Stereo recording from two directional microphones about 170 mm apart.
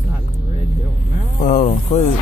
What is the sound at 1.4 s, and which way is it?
Speech, 50° left (ahead or behind).